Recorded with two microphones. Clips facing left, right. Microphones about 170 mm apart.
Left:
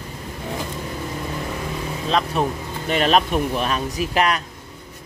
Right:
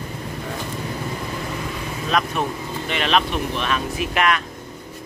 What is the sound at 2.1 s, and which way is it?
Speech, 30° left (ahead or behind).